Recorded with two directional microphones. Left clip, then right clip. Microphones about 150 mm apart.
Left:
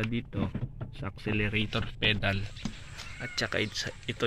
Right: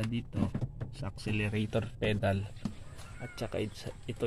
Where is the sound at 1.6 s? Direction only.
50° right (ahead or behind).